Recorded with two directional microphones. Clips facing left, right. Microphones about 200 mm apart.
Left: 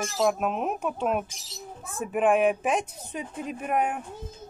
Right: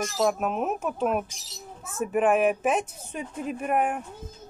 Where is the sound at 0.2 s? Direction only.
Centre (ahead or behind).